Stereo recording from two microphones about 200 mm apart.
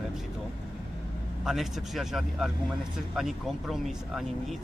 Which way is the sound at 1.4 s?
Centre (ahead or behind).